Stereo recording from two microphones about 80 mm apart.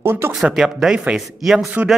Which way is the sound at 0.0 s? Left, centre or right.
Right.